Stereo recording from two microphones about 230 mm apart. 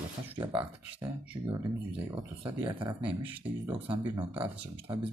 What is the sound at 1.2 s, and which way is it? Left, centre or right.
Speech, centre.